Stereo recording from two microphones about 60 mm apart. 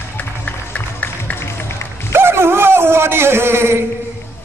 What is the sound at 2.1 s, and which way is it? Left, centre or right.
A man's voice, right.